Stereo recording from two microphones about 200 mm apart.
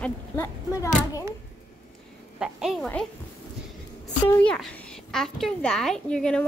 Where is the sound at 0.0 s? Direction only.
15° left (ahead or behind).